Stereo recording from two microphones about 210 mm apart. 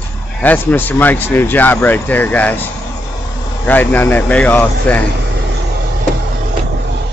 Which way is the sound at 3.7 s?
10° left (ahead or behind).